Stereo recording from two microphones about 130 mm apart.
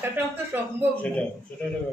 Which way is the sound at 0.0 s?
15° right (ahead or behind).